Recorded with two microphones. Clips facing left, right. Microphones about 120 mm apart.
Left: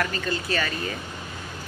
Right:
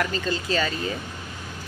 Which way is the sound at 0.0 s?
25° right (ahead or behind).